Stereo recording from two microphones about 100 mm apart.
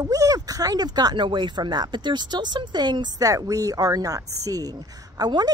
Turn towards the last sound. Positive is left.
turn(degrees=-45)  # may be behind; listen again after turning